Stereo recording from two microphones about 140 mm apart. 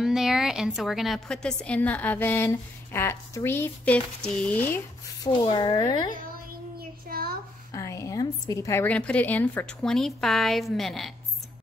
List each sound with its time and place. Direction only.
0.0 s a woman's voice: 5° right (ahead or behind); by 5.3 s 15° left (ahead or behind)
5.4 s speech: 35° left (ahead or behind)
6.8 s child singing: 90° right
7.7 s a sound: 20° left (ahead or behind)
8.8 s a woman's voice: 10° left (ahead or behind)